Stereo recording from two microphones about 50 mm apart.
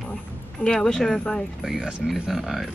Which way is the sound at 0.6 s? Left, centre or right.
Centre.